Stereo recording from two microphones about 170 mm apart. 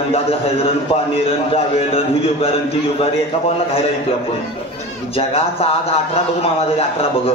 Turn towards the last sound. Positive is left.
turn(degrees=35)  # may be behind; listen again after turning